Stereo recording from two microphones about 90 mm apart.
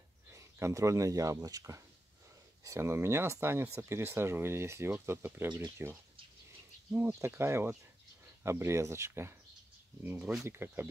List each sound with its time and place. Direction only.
0.3 s speech: 35° right (ahead or behind)